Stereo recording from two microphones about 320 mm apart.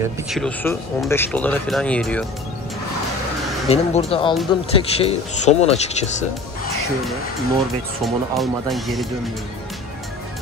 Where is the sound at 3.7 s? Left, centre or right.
Centre.